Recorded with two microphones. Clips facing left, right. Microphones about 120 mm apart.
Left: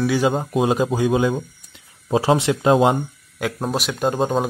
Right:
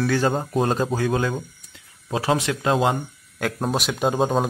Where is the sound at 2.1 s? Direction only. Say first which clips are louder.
Left 5 dB; 25° left (ahead or behind).